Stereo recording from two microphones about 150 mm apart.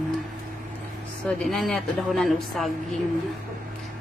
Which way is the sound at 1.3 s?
Centre (ahead or behind).